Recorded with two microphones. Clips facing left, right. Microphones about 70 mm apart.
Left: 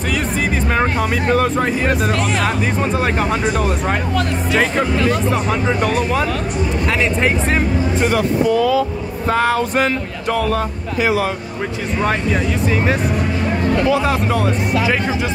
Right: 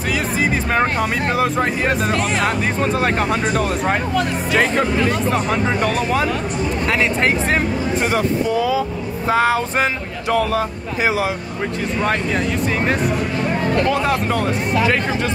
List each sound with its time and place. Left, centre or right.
0.1 s speech: centre
8.1 s music: centre
10.3 s speech: centre
11.0 s speech: right
13.8 s speech: centre